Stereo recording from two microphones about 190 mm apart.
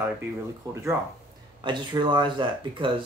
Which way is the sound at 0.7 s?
15° right (ahead or behind).